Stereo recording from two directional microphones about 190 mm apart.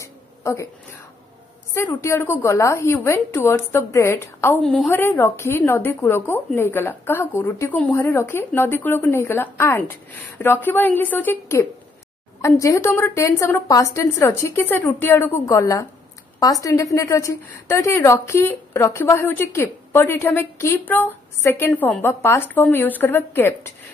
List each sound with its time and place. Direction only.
0.0 s a sound: 15° left (ahead or behind)
1.7 s a woman's voice: 15° left (ahead or behind)
4.6 s a woman's voice: centre (ahead or behind)
4.9 s a woman's voice: 10° left (ahead or behind)